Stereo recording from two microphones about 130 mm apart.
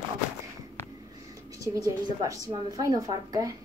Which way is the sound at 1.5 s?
25° right (ahead or behind).